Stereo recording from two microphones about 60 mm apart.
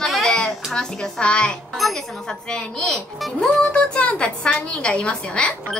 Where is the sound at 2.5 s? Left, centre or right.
Centre.